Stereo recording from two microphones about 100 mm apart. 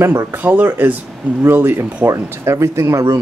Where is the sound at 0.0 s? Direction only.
25° right (ahead or behind).